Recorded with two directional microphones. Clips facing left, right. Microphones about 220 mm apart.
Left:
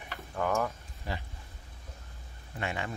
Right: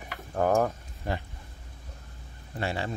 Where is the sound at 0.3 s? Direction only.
40° right (ahead or behind).